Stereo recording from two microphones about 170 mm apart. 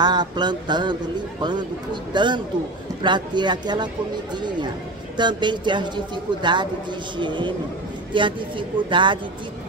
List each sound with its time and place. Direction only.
0.0 s a man's voice: 25° right (ahead or behind)
2.1 s a man's voice: 25° right (ahead or behind)
5.1 s a man's voice: 25° right (ahead or behind)